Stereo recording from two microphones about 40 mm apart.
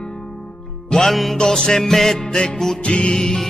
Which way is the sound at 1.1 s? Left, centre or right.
Centre.